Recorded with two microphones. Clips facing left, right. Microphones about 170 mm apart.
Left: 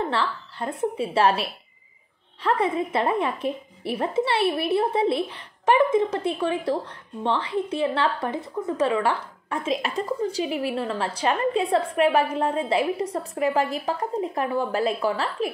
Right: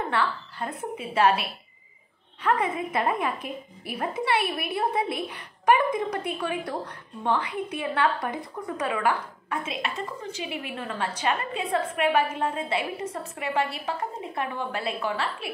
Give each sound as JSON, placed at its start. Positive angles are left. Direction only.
{"t": 0.1, "sound": "a woman's voice", "side_deg": 30}